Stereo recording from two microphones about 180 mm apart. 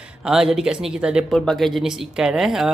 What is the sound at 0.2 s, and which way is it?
Speech, 5° right (ahead or behind).